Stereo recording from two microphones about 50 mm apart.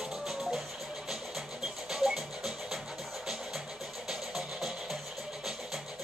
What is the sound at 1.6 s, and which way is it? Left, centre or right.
Music, centre.